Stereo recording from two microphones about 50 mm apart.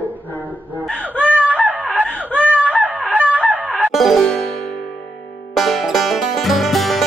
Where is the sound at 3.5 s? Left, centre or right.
Right.